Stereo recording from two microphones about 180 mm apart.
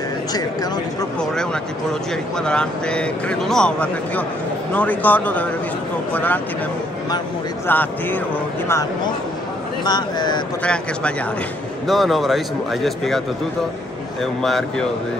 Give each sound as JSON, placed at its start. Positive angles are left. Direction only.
{"t": 0.3, "sound": "speech", "side_deg": 20}
{"t": 1.2, "sound": "speech", "side_deg": 5}
{"t": 7.6, "sound": "speech", "side_deg": 10}
{"t": 10.6, "sound": "speech", "side_deg": 5}
{"t": 14.4, "sound": "speech", "side_deg": 0}